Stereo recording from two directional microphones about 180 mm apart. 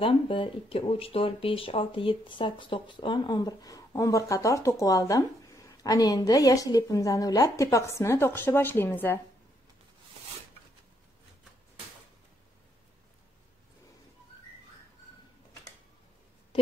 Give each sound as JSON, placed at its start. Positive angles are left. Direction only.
{"t": 0.0, "sound": "speech", "side_deg": 30}